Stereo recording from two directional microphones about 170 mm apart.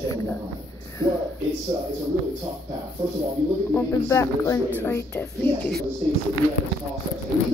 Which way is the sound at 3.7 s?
15° left (ahead or behind).